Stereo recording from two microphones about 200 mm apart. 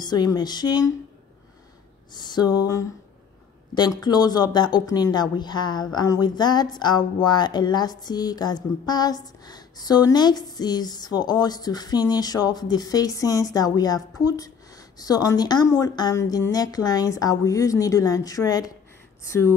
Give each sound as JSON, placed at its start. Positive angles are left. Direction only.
{"t": 0.0, "sound": "speech", "side_deg": 20}
{"t": 2.1, "sound": "speech", "side_deg": 20}